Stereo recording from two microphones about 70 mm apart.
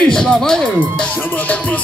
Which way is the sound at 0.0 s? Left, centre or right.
Centre.